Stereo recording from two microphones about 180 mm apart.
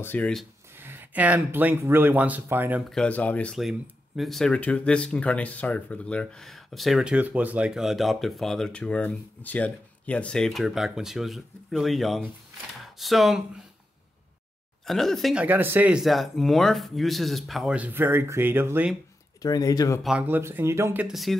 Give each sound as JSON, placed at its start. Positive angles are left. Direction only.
{"t": 0.0, "sound": "speech", "side_deg": 10}
{"t": 0.7, "sound": "speech", "side_deg": -10}
{"t": 2.8, "sound": "speech", "side_deg": 5}
{"t": 14.9, "sound": "speech", "side_deg": 0}
{"t": 19.4, "sound": "speech", "side_deg": 20}
{"t": 20.0, "sound": "speech", "side_deg": -5}